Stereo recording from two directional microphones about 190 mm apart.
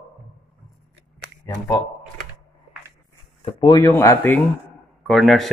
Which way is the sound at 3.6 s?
15° left (ahead or behind).